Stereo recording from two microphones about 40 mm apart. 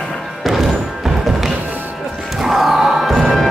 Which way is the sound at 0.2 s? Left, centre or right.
Centre.